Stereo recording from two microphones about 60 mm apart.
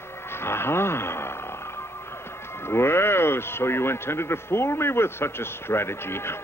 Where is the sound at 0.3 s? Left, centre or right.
Left.